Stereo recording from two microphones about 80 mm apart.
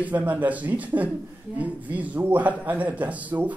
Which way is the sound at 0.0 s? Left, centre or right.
Right.